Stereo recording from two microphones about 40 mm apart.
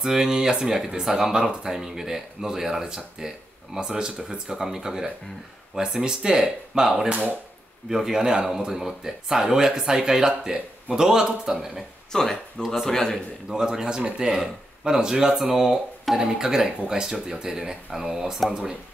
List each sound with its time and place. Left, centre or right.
0.0 s speech: centre
12.1 s speech: centre
13.5 s speech: centre
14.2 s speech: centre